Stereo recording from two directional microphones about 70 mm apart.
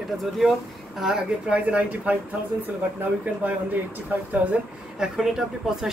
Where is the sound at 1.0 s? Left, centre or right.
Centre.